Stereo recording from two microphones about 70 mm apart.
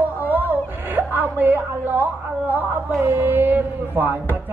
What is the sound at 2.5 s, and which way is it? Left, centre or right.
A man's voice, right.